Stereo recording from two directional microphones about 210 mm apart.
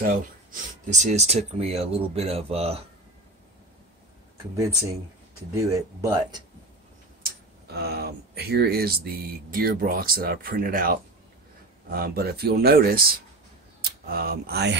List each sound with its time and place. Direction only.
0.0 s speech: 40° right (ahead or behind)
5.6 s speech: 15° right (ahead or behind)
7.2 s speech: 50° right (ahead or behind)